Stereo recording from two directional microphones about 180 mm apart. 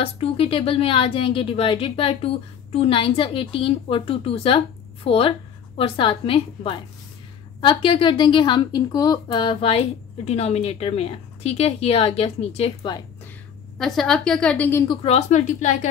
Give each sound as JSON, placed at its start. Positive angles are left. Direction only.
{"t": 0.0, "sound": "a woman's voice", "side_deg": 30}
{"t": 13.7, "sound": "a woman's voice", "side_deg": 0}
{"t": 15.0, "sound": "a woman's voice", "side_deg": 40}